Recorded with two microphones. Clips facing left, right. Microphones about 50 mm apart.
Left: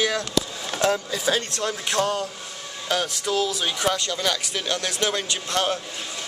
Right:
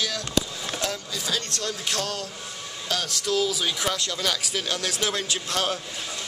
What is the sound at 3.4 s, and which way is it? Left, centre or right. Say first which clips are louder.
Speech: left 4 dB; centre.